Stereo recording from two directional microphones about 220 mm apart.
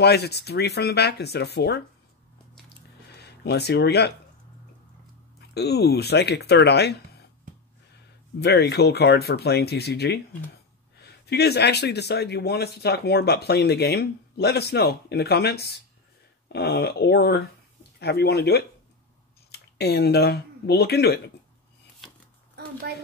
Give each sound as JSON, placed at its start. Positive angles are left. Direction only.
{"t": 0.0, "sound": "speech", "side_deg": 50}
{"t": 2.7, "sound": "drip", "side_deg": 50}
{"t": 5.5, "sound": "speech", "side_deg": 45}
{"t": 8.4, "sound": "speech", "side_deg": 50}